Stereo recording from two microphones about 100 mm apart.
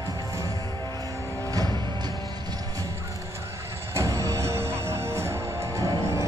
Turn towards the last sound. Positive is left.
turn(degrees=-35)  # may be behind; listen again after turning